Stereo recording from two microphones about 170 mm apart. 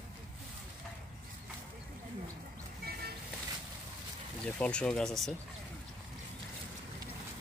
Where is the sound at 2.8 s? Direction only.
65° right (ahead or behind).